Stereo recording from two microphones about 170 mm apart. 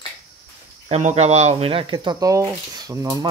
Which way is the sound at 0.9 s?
40° right (ahead or behind).